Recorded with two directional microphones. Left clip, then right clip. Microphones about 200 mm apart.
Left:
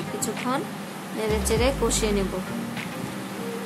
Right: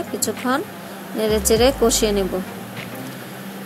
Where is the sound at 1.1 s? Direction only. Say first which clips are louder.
Right 7 dB; 20° right (ahead or behind).